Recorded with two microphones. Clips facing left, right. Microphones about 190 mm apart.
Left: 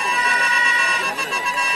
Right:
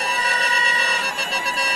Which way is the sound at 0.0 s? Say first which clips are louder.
Left 1 dB; 35° right (ahead or behind).